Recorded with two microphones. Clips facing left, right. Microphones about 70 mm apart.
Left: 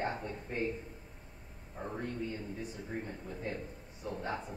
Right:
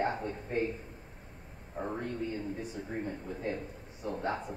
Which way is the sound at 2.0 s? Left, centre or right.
Right.